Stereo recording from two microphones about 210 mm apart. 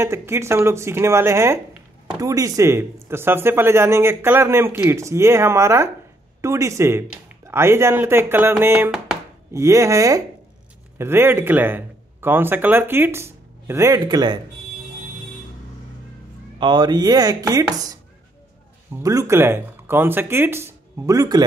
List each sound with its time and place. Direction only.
0.0 s speech: 10° right (ahead or behind)
9.5 s speech: 15° right (ahead or behind)
16.5 s speech: 20° right (ahead or behind)
19.0 s speech: 15° right (ahead or behind)